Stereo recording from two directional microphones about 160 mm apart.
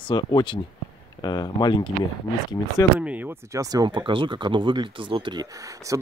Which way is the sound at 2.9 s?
10° right (ahead or behind).